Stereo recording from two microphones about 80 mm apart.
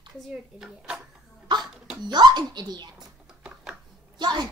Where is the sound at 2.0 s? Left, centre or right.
Right.